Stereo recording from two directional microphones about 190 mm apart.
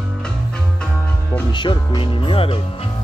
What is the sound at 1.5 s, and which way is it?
Music, 25° left (ahead or behind).